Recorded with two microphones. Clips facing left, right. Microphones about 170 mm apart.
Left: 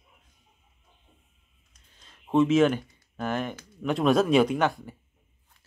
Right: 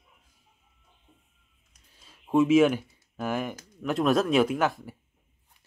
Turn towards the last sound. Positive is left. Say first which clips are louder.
# left 1 dB
turn(degrees=0)  # may be behind; listen again after turning